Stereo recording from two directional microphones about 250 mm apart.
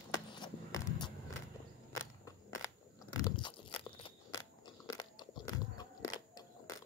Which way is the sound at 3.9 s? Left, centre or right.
Centre.